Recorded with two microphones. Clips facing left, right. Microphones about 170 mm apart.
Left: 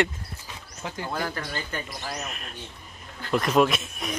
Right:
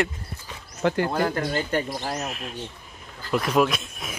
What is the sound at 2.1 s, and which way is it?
Speech, centre (ahead or behind).